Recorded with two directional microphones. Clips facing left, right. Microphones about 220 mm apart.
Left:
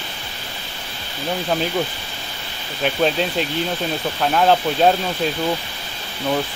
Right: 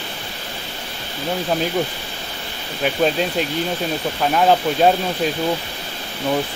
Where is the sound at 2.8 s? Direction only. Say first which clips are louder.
Right 1 dB; 5° right (ahead or behind).